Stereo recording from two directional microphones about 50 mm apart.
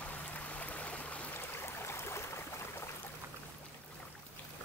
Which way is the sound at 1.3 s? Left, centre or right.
Left.